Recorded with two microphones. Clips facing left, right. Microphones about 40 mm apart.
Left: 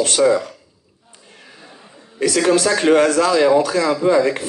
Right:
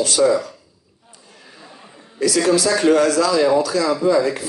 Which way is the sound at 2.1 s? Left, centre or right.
Left.